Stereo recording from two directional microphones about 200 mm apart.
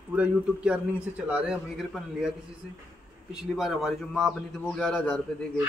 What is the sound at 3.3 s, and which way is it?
A man's voice, centre (ahead or behind).